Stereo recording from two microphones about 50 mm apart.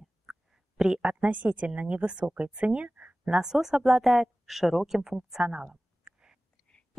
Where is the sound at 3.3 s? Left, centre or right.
Centre.